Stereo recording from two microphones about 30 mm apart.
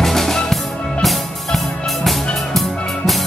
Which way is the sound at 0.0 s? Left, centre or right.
Centre.